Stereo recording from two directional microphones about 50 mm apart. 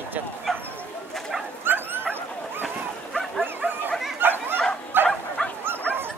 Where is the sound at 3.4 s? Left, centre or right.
Right.